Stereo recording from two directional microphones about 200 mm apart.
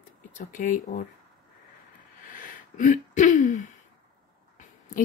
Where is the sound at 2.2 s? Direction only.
40° left (ahead or behind).